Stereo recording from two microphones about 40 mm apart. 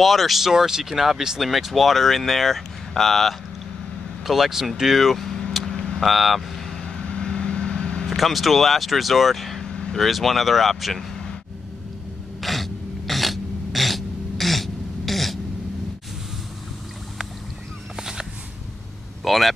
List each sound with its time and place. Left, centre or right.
0.0 s speech: centre
0.5 s speech: centre
4.2 s speech: centre
7.0 s vehicle: left
8.1 s speech: centre
12.4 s throat clearing: centre
17.9 s fowl: centre
19.2 s vehicle: centre